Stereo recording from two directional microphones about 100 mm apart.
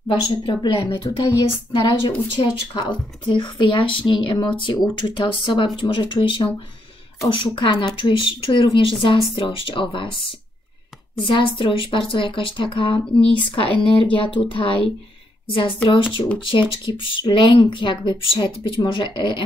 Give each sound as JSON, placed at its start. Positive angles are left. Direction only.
{"t": 0.1, "sound": "speech", "side_deg": 55}
{"t": 1.7, "sound": "a woman's voice", "side_deg": 55}
{"t": 7.5, "sound": "a woman's voice", "side_deg": 50}